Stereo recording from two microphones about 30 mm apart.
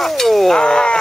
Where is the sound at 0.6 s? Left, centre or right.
Left.